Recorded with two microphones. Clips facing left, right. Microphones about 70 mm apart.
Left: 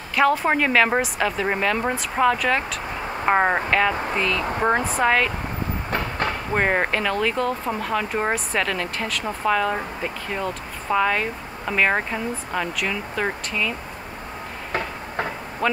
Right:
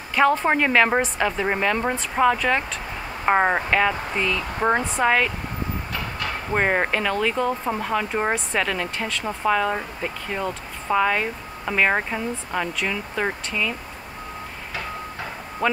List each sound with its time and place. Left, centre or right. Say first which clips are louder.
0.1 s speech: even; centre
5.9 s train: left 4 dB; left
6.5 s speech: right 1 dB; centre
15.6 s speech: even; centre